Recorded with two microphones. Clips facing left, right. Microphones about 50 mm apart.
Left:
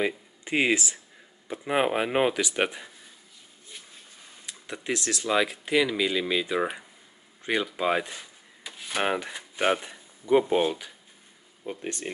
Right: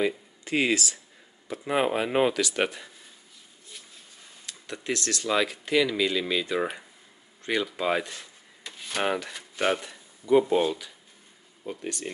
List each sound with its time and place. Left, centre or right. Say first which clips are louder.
0.0 s speech: right 1 dB; centre
4.5 s speech: even; centre